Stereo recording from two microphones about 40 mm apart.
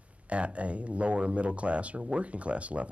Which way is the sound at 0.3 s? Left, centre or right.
Right.